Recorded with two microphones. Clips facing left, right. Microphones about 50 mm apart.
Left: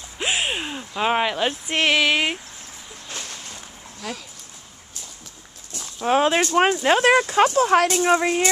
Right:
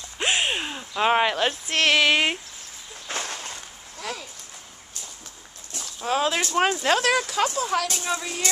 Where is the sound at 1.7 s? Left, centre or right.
Centre.